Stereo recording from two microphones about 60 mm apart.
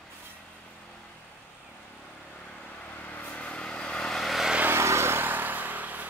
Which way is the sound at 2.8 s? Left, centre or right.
Left.